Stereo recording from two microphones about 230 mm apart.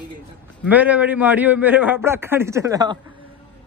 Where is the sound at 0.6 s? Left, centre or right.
Centre.